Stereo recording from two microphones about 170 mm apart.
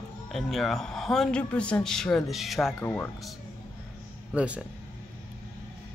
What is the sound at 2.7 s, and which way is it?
Speech, 10° left (ahead or behind).